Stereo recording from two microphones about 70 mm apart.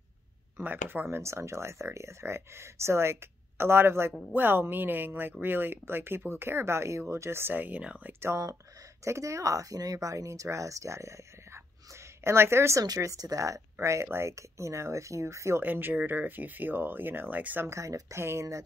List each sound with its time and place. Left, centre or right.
0.6 s speech: right
1.1 s speech: right; by 8.1 s centre
8.1 s speech: right
12.8 s speech: right
13.7 s speech: right
15.6 s speech: right
17.6 s speech: right